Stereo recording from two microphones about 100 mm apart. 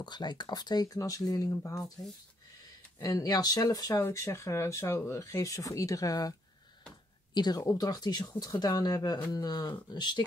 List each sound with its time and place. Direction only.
0.0 s speech: 50° left (ahead or behind); by 1.9 s 30° left (ahead or behind)
3.0 s speech: 35° left (ahead or behind)
3.9 s speech: 25° left (ahead or behind)
7.3 s speech: 40° left (ahead or behind)